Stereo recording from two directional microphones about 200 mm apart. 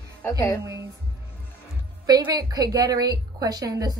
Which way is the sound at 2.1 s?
20° right (ahead or behind).